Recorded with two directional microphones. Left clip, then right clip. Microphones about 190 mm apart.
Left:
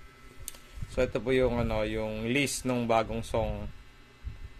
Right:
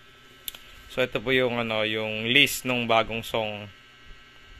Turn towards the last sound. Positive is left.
turn(degrees=5)  # may be behind; listen again after turning